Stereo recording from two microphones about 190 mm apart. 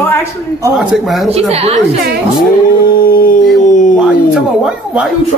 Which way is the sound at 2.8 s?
50° left (ahead or behind).